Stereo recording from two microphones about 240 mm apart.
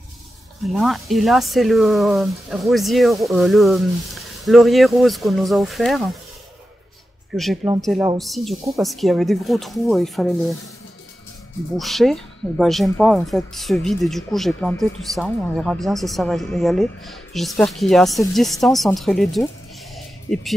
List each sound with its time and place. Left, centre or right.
0.7 s speech: centre
7.3 s speech: centre
11.7 s speech: centre